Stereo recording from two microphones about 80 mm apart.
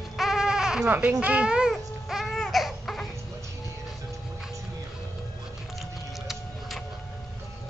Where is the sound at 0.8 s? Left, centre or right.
Right.